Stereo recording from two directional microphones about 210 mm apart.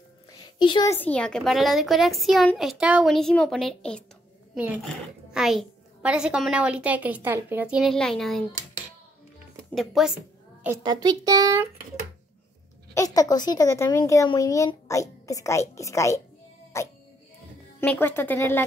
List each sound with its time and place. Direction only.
0.6 s a child's voice: 20° left (ahead or behind)
0.9 s a woman's voice: 5° left (ahead or behind)
5.3 s a woman's voice: centre (ahead or behind)
9.8 s a woman's voice: centre (ahead or behind)
10.8 s speech: 20° right (ahead or behind)
12.9 s speech: 15° left (ahead or behind)